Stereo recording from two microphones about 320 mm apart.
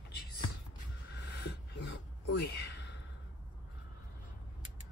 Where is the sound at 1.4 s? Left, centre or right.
Left.